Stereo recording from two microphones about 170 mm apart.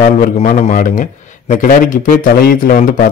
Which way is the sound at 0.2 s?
45° left (ahead or behind).